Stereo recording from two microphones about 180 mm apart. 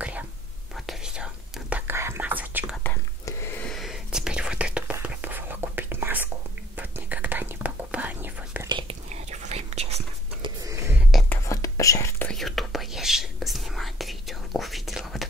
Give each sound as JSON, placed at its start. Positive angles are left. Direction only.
{"t": 0.7, "sound": "whispering", "side_deg": 0}
{"t": 2.8, "sound": "whispering", "side_deg": 15}
{"t": 3.7, "sound": "whispering", "side_deg": 0}
{"t": 8.6, "sound": "whispering", "side_deg": -25}
{"t": 10.6, "sound": "a sound", "side_deg": -15}
{"t": 11.2, "sound": "whispering", "side_deg": 15}
{"t": 12.3, "sound": "whispering", "side_deg": 0}